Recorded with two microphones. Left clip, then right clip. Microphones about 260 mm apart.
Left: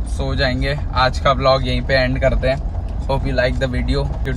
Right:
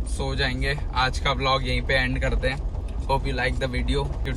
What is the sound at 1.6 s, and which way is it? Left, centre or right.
Speech, left.